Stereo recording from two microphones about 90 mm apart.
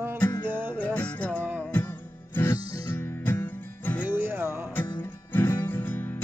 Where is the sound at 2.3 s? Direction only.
30° left (ahead or behind).